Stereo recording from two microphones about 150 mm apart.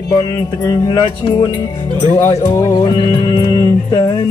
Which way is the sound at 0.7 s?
25° left (ahead or behind).